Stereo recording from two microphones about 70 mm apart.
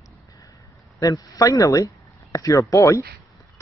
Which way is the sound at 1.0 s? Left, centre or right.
Left.